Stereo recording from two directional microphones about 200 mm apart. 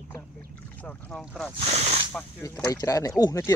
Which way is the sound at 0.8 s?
5° left (ahead or behind).